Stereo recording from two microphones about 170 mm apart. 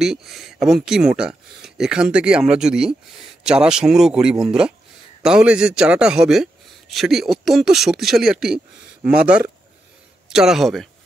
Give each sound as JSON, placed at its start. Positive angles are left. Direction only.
{"t": 0.0, "sound": "a man's voice", "side_deg": 0}